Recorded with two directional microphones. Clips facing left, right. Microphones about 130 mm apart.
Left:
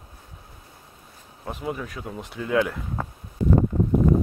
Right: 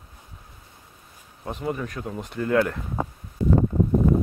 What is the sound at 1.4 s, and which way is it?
Speech, centre (ahead or behind).